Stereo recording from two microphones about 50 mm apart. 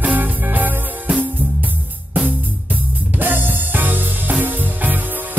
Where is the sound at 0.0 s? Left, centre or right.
Right.